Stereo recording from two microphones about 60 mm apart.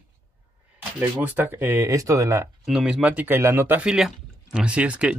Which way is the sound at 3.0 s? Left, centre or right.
Right.